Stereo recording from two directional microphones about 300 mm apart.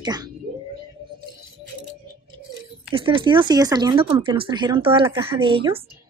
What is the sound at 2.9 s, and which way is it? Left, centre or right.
Speech, centre.